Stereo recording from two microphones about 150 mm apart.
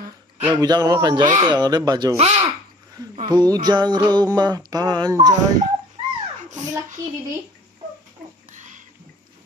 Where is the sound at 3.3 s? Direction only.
25° right (ahead or behind).